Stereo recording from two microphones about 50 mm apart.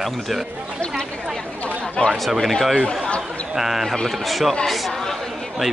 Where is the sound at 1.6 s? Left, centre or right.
Left.